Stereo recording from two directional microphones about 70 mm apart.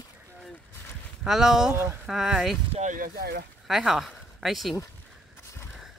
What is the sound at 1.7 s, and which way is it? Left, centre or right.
Speech, right.